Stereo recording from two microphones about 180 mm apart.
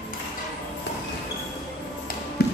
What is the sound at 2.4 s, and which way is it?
Music, 60° left (ahead or behind).